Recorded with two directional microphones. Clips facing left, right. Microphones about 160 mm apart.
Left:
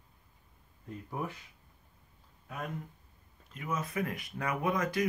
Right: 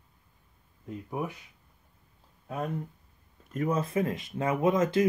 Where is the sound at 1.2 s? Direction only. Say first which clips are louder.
Right 4 dB; 15° right (ahead or behind).